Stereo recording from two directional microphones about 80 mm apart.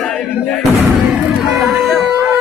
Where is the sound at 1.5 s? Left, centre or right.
Centre.